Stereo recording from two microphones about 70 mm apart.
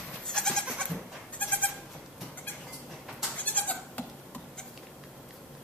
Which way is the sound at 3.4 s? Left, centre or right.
Left.